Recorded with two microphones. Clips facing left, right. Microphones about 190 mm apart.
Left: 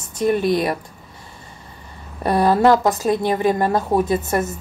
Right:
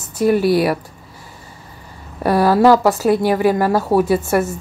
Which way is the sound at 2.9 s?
10° right (ahead or behind).